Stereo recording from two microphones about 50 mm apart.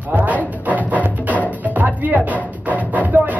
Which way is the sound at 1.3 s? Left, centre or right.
Left.